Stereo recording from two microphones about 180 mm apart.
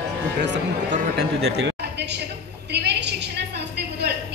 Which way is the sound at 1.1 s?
65° right (ahead or behind).